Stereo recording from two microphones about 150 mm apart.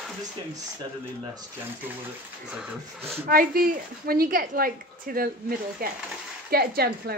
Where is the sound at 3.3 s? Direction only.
75° right (ahead or behind).